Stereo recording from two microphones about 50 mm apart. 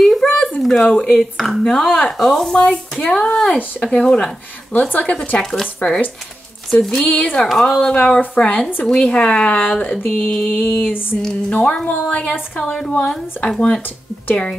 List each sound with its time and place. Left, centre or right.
0.0 s a sound: centre
0.8 s a woman's voice: left
1.1 s speech: centre
1.6 s a woman's voice: centre
4.7 s a sound: left
5.4 s speech: centre
6.7 s speech: centre
7.9 s a woman's voice: left
10.0 s a sound: left
11.8 s a woman's voice: left